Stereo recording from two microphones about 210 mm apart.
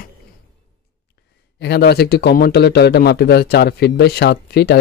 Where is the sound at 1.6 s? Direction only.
50° left (ahead or behind).